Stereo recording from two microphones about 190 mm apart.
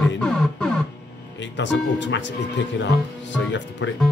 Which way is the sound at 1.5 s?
70° left (ahead or behind).